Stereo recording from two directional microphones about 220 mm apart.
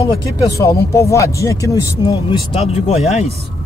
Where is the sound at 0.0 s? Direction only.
15° left (ahead or behind).